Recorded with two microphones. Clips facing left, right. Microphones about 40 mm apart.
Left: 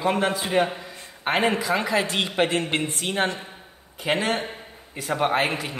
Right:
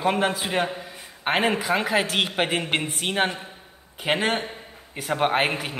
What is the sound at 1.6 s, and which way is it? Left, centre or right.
A man's voice, right.